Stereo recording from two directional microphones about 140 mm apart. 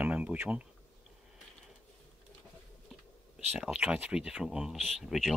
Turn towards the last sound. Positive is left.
turn(degrees=0)  # may be behind; listen again after turning